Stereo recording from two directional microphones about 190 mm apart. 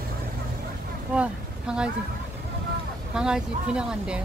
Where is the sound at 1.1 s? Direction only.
5° right (ahead or behind).